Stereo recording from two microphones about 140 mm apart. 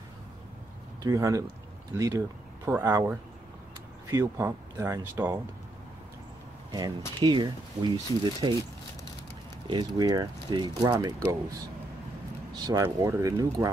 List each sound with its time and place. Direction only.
1.0 s speech: 25° right (ahead or behind)
6.7 s speech: 30° right (ahead or behind)
9.7 s speech: 30° right (ahead or behind)
12.6 s speech: 20° right (ahead or behind)